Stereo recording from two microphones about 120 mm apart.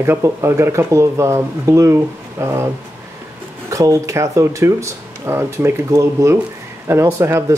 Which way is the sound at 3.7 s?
25° right (ahead or behind).